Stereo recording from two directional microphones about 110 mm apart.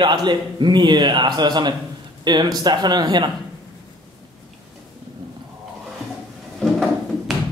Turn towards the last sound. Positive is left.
turn(degrees=5)  # may be behind; listen again after turning